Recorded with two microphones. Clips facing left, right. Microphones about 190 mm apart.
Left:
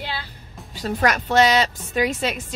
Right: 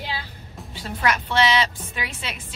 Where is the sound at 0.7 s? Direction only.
40° left (ahead or behind).